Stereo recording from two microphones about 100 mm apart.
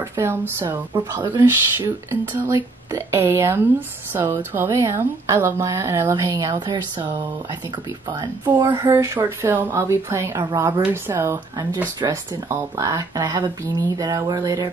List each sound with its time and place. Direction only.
0.1 s speech: 25° right (ahead or behind)
7.0 s speech: 20° right (ahead or behind)
8.5 s speech: 40° right (ahead or behind)